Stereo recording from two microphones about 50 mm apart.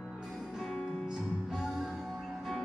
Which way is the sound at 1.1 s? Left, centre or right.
Centre.